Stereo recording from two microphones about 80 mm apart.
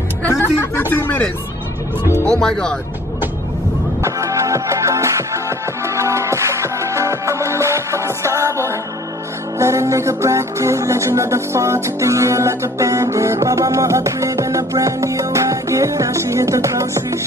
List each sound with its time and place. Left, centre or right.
0.3 s speech: left
2.3 s speech: centre
4.0 s music: right